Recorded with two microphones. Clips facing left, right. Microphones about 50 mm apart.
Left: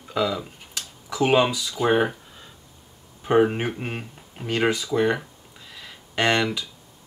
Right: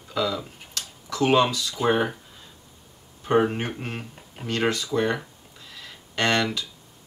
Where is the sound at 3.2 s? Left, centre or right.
Centre.